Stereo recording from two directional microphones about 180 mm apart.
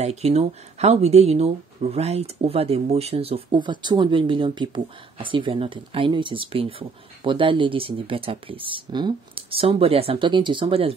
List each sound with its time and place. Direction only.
0.0 s speech: 35° right (ahead or behind)